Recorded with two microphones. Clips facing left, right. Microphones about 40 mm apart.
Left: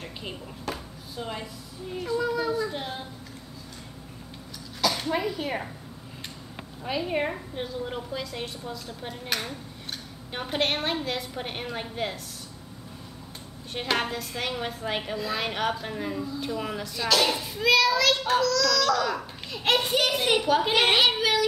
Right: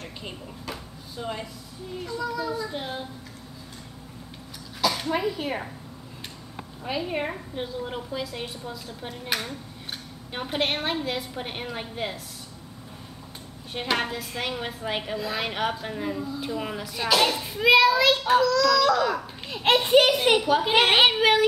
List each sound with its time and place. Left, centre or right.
0.0 s a sound: centre
1.1 s a woman's voice: centre
2.0 s a child's voice: centre
2.7 s a woman's voice: centre
4.8 s a woman's voice: centre
6.8 s a woman's voice: centre
13.7 s a woman's voice: centre
16.9 s a child's voice: centre
19.8 s speech: right
20.4 s a woman's voice: centre
20.9 s speech: right